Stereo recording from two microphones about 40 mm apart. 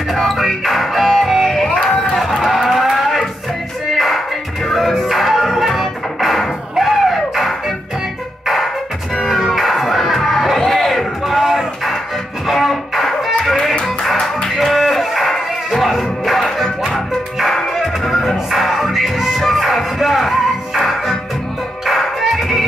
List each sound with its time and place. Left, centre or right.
0.1 s music: centre
1.9 s run: centre
2.4 s livestock: centre
3.9 s music: centre
9.2 s music: centre
14.6 s music: centre
15.3 s a sound: centre
16.0 s music: centre